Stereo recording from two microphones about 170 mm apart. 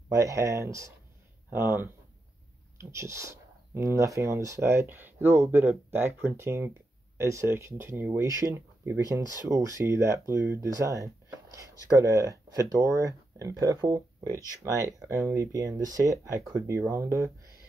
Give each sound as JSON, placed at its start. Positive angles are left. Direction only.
{"t": 0.1, "sound": "speech", "side_deg": -20}